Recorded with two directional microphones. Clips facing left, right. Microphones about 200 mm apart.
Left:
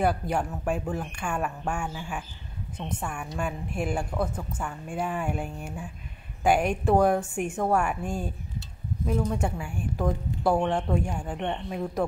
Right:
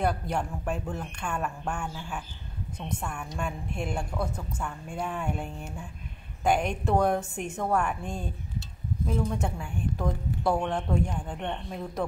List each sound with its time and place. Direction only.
0.0 s speech: 5° left (ahead or behind)